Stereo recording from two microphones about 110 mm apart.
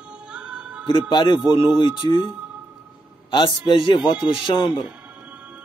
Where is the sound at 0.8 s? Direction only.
45° left (ahead or behind).